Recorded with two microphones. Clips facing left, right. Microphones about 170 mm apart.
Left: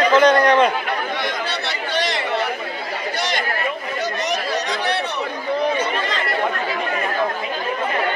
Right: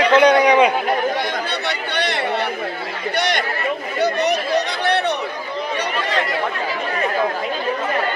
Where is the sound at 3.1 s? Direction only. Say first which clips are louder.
Right 5 dB; 65° right (ahead or behind).